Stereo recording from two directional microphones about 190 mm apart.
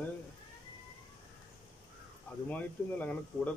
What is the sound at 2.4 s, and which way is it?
Speech, 10° left (ahead or behind).